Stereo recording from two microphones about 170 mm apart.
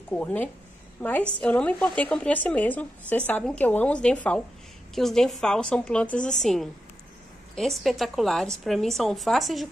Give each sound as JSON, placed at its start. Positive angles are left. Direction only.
{"t": 0.1, "sound": "a woman's voice", "side_deg": 10}